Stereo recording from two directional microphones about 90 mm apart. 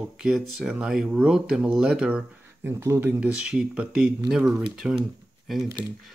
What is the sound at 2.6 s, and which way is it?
Speech, 25° right (ahead or behind).